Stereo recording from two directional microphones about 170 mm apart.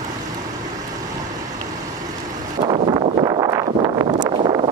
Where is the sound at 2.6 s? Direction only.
30° right (ahead or behind).